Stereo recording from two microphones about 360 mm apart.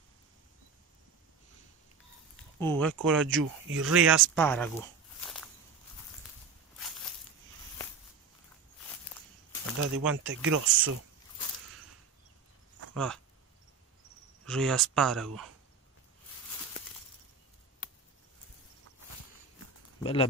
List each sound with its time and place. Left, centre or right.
2.6 s speech: centre
2.9 s speech: right
3.7 s speech: centre
4.4 s walk: centre
9.9 s speech: right
12.9 s speech: centre
14.4 s speech: centre
20.0 s speech: centre